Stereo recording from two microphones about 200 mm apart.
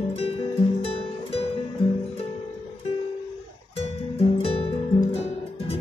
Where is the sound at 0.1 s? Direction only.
30° left (ahead or behind).